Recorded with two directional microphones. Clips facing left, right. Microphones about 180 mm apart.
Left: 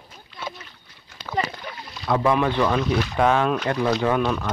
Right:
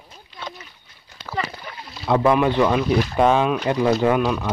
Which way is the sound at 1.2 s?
5° right (ahead or behind).